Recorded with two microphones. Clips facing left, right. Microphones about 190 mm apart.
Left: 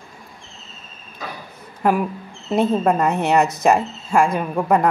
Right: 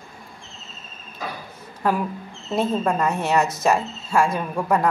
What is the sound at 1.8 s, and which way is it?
Speech, 15° left (ahead or behind).